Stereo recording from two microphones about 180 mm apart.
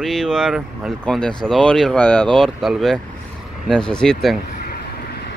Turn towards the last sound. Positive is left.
turn(degrees=0)  # may be behind; listen again after turning